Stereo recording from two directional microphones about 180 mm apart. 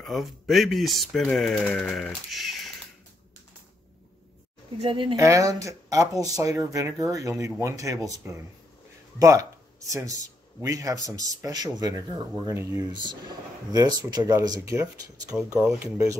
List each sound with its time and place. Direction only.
0.0 s speech: centre (ahead or behind)
4.8 s speech: 30° right (ahead or behind)
5.2 s speech: 15° right (ahead or behind)
12.9 s speech: 25° right (ahead or behind)
15.6 s speech: 5° right (ahead or behind)